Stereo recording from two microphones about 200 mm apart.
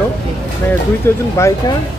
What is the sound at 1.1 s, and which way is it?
Speech, 15° left (ahead or behind).